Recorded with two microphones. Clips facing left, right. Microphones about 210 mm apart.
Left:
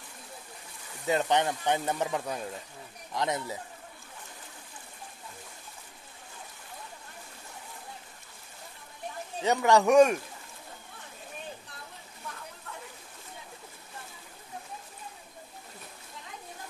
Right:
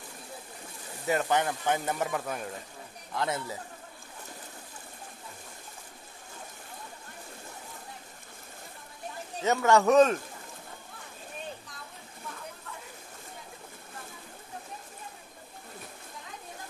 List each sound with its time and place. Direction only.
1.0 s speech: 20° left (ahead or behind)
9.4 s speech: 15° left (ahead or behind)